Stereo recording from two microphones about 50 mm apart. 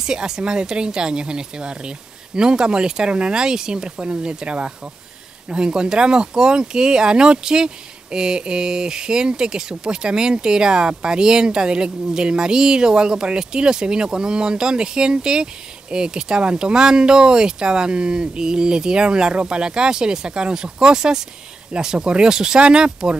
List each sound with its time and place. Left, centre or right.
0.0 s speech: centre